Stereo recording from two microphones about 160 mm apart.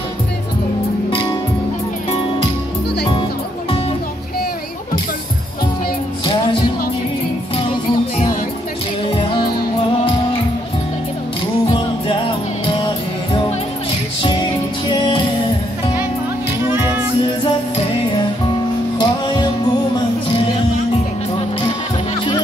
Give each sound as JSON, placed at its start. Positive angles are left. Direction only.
{"t": 14.2, "sound": "music", "side_deg": 30}
{"t": 18.9, "sound": "music", "side_deg": 30}